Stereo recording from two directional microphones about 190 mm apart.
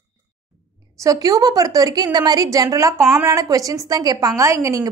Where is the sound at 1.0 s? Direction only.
20° right (ahead or behind).